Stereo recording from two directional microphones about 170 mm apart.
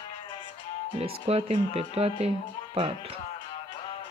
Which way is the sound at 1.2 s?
35° right (ahead or behind).